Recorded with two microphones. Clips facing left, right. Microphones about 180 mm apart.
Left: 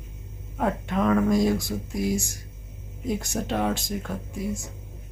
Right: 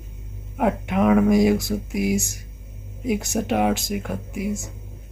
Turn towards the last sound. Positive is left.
turn(degrees=-10)  # may be behind; listen again after turning